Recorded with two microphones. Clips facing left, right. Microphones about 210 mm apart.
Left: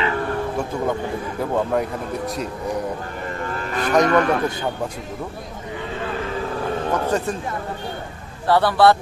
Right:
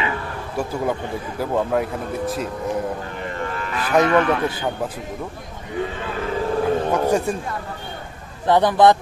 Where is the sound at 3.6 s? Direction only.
40° left (ahead or behind).